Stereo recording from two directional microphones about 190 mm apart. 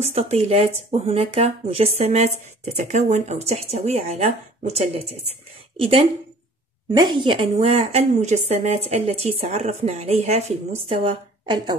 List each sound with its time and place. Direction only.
0.0 s a woman's voice: 35° right (ahead or behind)